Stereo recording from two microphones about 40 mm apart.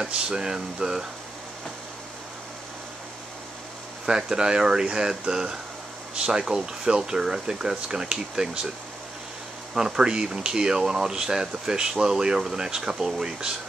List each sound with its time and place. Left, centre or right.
0.0 s speech: centre
4.1 s speech: centre
9.8 s speech: centre